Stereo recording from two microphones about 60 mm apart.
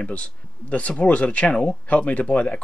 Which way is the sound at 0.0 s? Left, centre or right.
Left.